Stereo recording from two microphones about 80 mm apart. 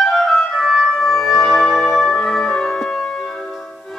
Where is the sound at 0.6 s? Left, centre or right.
Centre.